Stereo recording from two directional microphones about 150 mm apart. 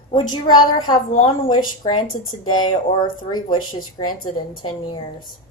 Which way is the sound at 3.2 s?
30° left (ahead or behind).